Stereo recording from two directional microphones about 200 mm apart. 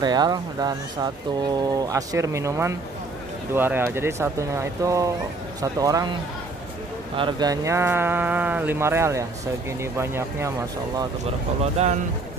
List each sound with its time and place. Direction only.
0.0 s speech: 20° right (ahead or behind)
7.2 s speech: 20° right (ahead or behind)
11.6 s speech: 35° right (ahead or behind)